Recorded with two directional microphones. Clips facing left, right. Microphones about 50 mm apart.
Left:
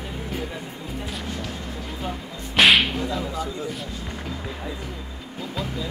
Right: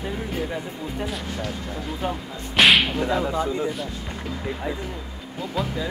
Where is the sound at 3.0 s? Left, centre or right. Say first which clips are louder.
Right 4 dB; right.